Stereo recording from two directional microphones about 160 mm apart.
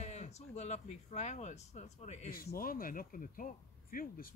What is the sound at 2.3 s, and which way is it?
Speech, 65° left (ahead or behind).